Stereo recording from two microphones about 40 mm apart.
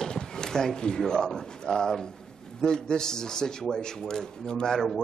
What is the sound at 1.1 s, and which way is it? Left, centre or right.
A man's voice, centre.